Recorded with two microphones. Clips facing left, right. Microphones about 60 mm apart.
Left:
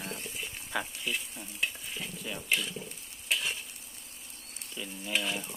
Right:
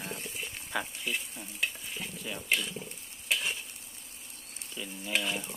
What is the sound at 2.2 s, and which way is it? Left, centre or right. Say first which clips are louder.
Speech: even; centre.